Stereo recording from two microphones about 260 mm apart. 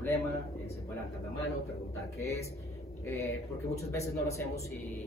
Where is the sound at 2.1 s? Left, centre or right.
Centre.